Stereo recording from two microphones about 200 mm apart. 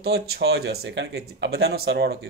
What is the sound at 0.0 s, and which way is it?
Speech, 50° right (ahead or behind).